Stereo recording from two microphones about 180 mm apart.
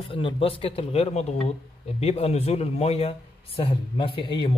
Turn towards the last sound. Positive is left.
turn(degrees=30)  # may be behind; listen again after turning